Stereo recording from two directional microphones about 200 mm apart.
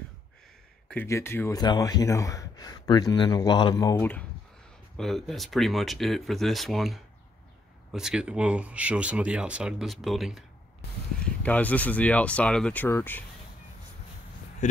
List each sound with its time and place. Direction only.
0.8 s speech: 10° left (ahead or behind)
11.4 s speech: 5° left (ahead or behind)
14.6 s speech: 35° left (ahead or behind)